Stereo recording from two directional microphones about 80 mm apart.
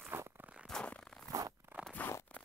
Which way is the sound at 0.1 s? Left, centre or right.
Right.